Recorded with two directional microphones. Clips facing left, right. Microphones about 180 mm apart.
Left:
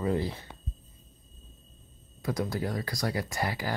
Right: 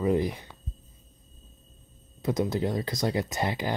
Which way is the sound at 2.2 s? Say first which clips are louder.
Right 4 dB; 20° right (ahead or behind).